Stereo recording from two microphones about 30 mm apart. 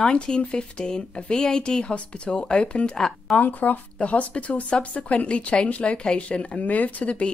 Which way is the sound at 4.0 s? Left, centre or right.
Left.